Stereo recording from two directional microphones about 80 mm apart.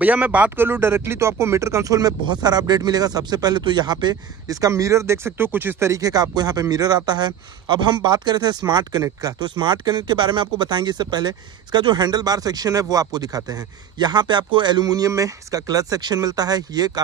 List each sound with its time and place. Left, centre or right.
0.0 s speech: centre
5.9 s speech: right